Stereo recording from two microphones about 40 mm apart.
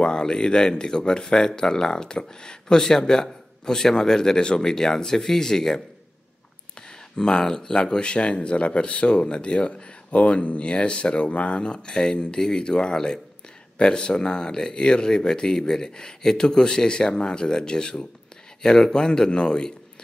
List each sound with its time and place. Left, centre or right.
0.0 s speech: centre
7.2 s speech: left